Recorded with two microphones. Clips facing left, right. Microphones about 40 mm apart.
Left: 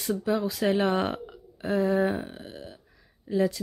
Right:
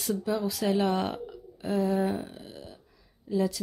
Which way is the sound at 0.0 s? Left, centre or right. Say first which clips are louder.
Left 2 dB; centre.